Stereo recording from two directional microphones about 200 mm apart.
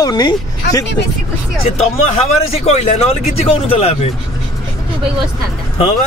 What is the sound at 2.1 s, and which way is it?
Speech, 30° left (ahead or behind).